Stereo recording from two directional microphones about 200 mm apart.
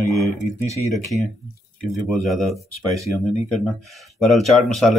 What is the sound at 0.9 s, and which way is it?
Speech, centre (ahead or behind).